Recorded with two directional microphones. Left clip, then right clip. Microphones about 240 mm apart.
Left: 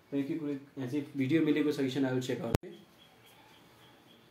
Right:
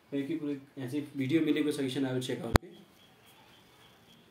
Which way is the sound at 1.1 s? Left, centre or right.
Centre.